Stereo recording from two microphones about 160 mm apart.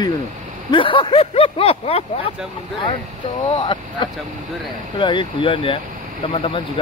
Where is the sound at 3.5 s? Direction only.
30° left (ahead or behind).